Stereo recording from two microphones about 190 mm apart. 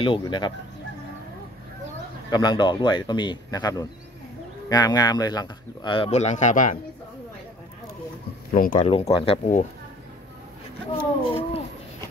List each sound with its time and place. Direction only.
0.0 s a man's voice: 25° left (ahead or behind)
2.3 s a man's voice: 25° left (ahead or behind); by 6.8 s 40° left (ahead or behind)
8.5 s speech: 45° left (ahead or behind)
9.1 s speech: 30° left (ahead or behind)
11.0 s a sound: 30° left (ahead or behind)